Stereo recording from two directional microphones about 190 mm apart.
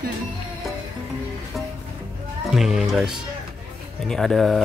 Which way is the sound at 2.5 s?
Centre (ahead or behind).